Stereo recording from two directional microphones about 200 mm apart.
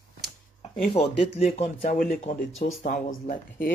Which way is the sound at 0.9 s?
35° left (ahead or behind).